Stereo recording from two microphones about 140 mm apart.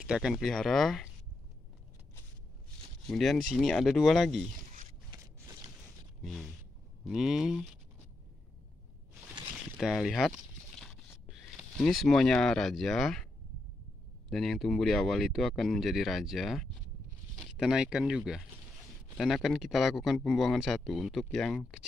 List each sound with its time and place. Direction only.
0.0 s speech: 5° right (ahead or behind)
3.1 s speech: centre (ahead or behind)
5.1 s a sound: 35° right (ahead or behind)
7.1 s speech: 5° right (ahead or behind)
9.8 s speech: centre (ahead or behind)
11.8 s speech: centre (ahead or behind)
14.3 s speech: centre (ahead or behind)